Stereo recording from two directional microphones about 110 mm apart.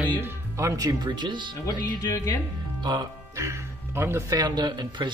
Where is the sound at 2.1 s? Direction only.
30° left (ahead or behind).